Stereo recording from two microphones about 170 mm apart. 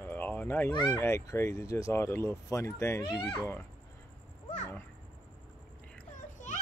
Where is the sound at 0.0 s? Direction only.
10° left (ahead or behind).